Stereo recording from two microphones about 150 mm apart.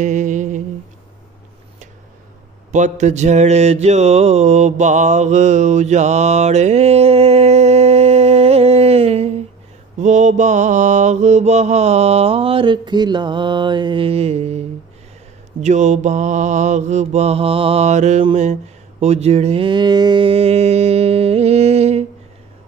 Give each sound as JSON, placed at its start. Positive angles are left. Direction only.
{"t": 0.0, "sound": "a sound", "side_deg": -55}
{"t": 2.7, "sound": "mantra", "side_deg": -50}
{"t": 15.6, "sound": "mantra", "side_deg": -50}